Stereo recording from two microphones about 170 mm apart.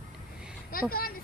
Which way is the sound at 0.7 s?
60° left (ahead or behind).